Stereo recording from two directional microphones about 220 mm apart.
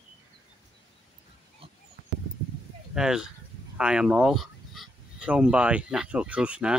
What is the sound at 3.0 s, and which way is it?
Speech, 5° right (ahead or behind).